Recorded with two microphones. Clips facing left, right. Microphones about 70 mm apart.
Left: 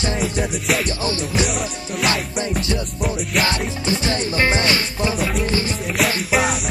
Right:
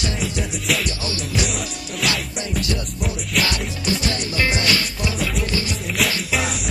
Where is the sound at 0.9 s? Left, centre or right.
Left.